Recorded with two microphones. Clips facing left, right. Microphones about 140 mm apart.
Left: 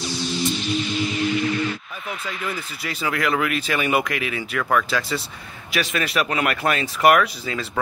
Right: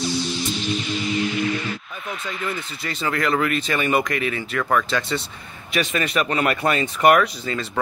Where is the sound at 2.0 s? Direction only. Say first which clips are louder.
Right 1 dB; centre (ahead or behind).